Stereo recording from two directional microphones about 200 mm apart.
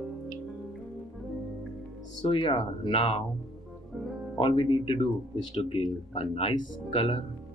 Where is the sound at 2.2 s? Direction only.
25° left (ahead or behind).